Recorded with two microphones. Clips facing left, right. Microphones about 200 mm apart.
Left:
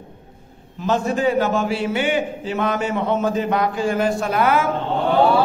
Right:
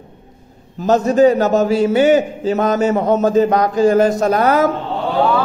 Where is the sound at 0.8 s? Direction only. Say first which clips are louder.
Right 8 dB; 40° right (ahead or behind).